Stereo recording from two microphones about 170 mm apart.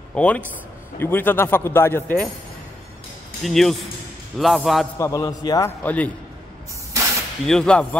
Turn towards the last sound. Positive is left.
turn(degrees=5)  # may be behind; listen again after turning